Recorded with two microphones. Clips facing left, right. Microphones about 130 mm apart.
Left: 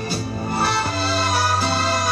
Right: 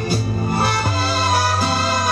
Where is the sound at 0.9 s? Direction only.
10° right (ahead or behind).